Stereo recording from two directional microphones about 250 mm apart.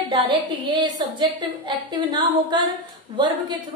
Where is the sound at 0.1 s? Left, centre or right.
Right.